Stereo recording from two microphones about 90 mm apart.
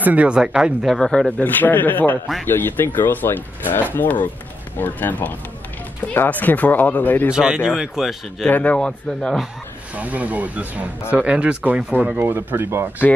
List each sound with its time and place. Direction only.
0.0 s speech: 15° right (ahead or behind)
0.9 s speech: 5° left (ahead or behind)
1.4 s speech: 20° left (ahead or behind)
7.3 s speech: 10° right (ahead or behind)
8.5 s speech: 20° left (ahead or behind)
9.9 s speech: 15° right (ahead or behind)